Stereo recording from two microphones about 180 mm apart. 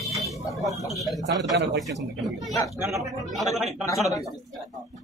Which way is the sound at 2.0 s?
Centre (ahead or behind).